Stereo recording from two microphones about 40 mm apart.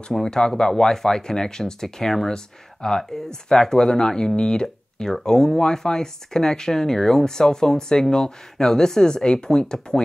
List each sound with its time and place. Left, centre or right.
0.2 s speech: centre